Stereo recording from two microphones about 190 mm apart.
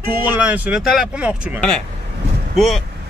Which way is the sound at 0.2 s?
10° right (ahead or behind).